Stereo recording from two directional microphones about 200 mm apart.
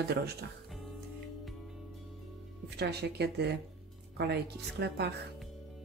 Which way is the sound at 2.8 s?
55° right (ahead or behind).